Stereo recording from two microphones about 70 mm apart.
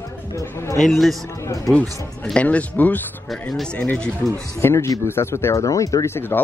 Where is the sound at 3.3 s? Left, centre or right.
Centre.